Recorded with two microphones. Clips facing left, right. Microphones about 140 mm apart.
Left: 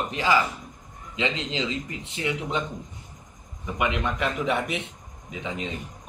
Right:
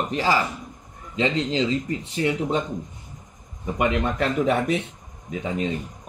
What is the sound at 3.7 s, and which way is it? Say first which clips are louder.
A man's voice: right 4 dB; 40° right (ahead or behind).